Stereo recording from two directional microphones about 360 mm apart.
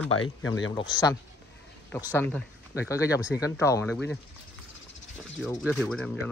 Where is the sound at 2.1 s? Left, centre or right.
Centre.